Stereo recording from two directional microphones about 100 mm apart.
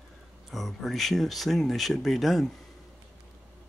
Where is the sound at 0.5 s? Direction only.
Centre (ahead or behind).